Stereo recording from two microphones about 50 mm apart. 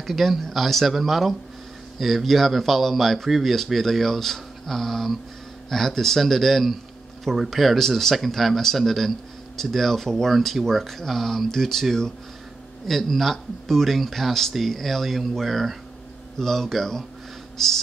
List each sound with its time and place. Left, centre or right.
0.0 s speech: centre